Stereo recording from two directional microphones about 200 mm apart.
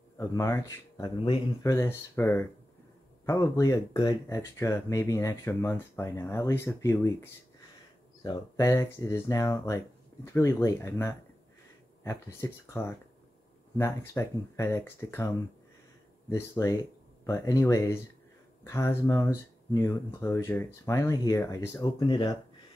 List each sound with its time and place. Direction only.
0.2 s speech: 15° left (ahead or behind)
8.2 s speech: 20° left (ahead or behind)